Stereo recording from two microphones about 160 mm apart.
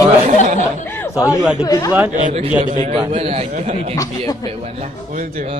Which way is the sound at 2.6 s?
35° right (ahead or behind).